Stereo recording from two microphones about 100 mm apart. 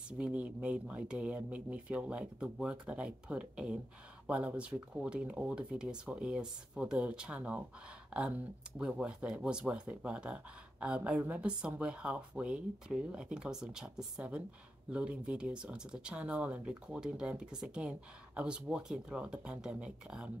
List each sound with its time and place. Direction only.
0.2 s speech: 15° right (ahead or behind)